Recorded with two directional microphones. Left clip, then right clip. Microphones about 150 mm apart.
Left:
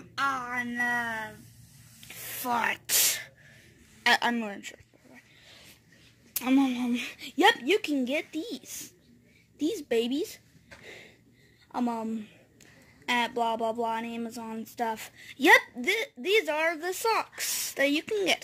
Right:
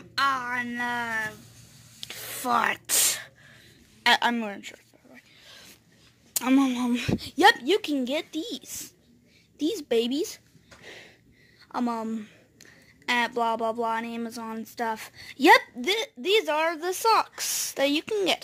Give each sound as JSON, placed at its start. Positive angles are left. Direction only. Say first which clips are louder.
{"t": 0.2, "sound": "a woman's voice", "louder": "right 4 dB", "side_deg": 5}
{"t": 2.4, "sound": "gasp", "louder": "right 4 dB", "side_deg": -10}
{"t": 4.1, "sound": "a sound", "louder": "right 3 dB", "side_deg": -5}
{"t": 6.3, "sound": "a woman's voice", "louder": "right 3 dB", "side_deg": -15}
{"t": 7.2, "sound": "a woman's voice", "louder": "right 3 dB", "side_deg": 0}
{"t": 9.8, "sound": "a woman's voice", "louder": "right 3 dB", "side_deg": -10}
{"t": 10.8, "sound": "a sound", "louder": "right 3 dB", "side_deg": 0}
{"t": 11.7, "sound": "a woman's voice", "louder": "right 2 dB", "side_deg": -5}